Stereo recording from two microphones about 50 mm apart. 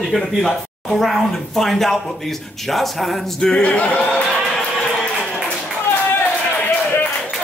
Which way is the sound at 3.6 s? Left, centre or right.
Left.